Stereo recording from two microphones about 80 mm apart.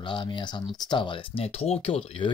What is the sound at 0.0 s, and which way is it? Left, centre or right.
Speech, left.